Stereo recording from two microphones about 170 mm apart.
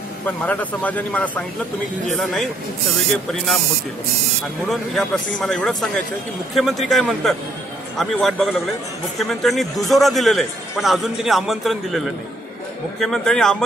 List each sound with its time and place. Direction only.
0.4 s a man's voice: 10° left (ahead or behind)
4.6 s a man's voice: centre (ahead or behind)